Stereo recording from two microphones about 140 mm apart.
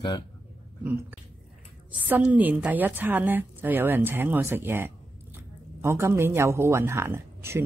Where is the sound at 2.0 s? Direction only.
10° right (ahead or behind).